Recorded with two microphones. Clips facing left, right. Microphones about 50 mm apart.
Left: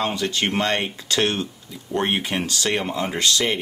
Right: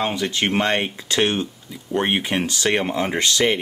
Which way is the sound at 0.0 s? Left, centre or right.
Centre.